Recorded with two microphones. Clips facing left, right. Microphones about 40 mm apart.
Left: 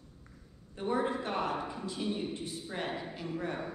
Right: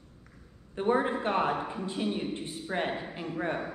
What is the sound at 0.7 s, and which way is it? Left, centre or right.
A man's voice, right.